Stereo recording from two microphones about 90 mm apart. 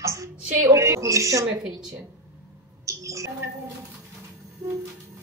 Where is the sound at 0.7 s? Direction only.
35° right (ahead or behind).